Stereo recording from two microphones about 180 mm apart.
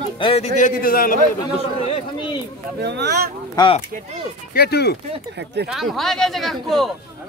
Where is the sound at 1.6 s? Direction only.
35° left (ahead or behind).